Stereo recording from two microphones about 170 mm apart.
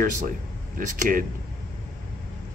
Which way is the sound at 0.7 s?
50° right (ahead or behind).